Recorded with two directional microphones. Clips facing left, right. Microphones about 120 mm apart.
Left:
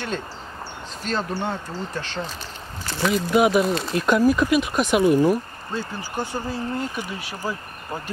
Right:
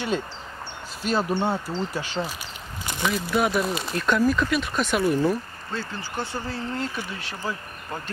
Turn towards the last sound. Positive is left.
turn(degrees=15)  # may be behind; listen again after turning